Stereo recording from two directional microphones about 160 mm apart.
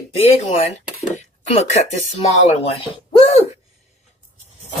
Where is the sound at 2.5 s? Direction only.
35° left (ahead or behind).